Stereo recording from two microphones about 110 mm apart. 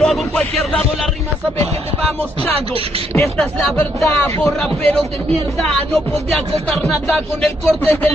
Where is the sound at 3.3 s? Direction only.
5° left (ahead or behind).